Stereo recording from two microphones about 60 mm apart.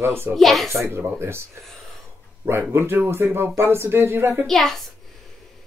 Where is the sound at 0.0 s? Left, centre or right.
Right.